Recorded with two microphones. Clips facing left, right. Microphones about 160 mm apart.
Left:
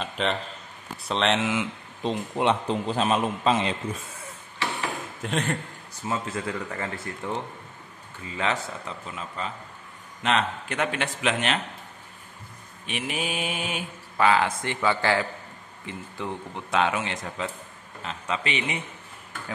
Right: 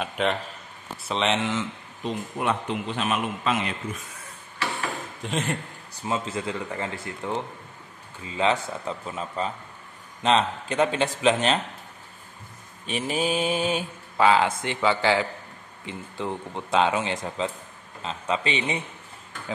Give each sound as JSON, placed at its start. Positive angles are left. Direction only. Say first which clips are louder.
{"t": 0.0, "sound": "a man's voice", "louder": "right 2 dB", "side_deg": -5}
{"t": 2.0, "sound": "a man's voice", "louder": "left 3 dB", "side_deg": 25}
{"t": 5.2, "sound": "speech", "louder": "left 1 dB", "side_deg": 0}
{"t": 6.0, "sound": "speech", "louder": "right 1 dB", "side_deg": -20}
{"t": 9.0, "sound": "mantra", "louder": "right 4 dB", "side_deg": -35}
{"t": 10.2, "sound": "speech", "louder": "right 3 dB", "side_deg": -30}
{"t": 12.8, "sound": "mantra", "louder": "right 5 dB", "side_deg": -35}
{"t": 14.1, "sound": "speech", "louder": "right 2 dB", "side_deg": -20}